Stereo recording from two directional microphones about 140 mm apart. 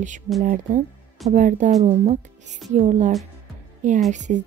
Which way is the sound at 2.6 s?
60° right (ahead or behind).